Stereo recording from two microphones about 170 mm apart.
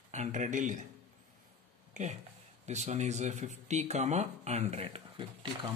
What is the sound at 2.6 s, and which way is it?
A man's voice, 45° right (ahead or behind).